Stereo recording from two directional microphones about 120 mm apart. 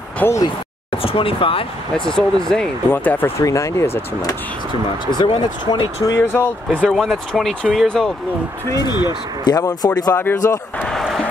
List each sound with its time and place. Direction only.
0.2 s speech: 15° left (ahead or behind)
1.0 s speech: 50° left (ahead or behind)
2.0 s speech: 5° left (ahead or behind)
2.9 s speech: 15° left (ahead or behind)
5.2 s speech: 40° left (ahead or behind)
6.0 s speech: 20° left (ahead or behind)
6.9 s speech: centre (ahead or behind)
8.7 s speech: 35° left (ahead or behind)
10.1 s speech: 20° left (ahead or behind)
10.8 s a sound: 5° left (ahead or behind)